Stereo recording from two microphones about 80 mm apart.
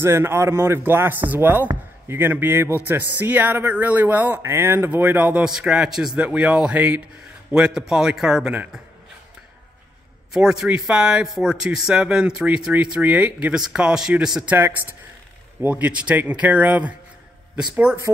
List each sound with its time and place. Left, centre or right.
0.0 s speech: right
5.4 s a man's voice: centre
10.3 s a man's voice: centre
15.6 s speech: centre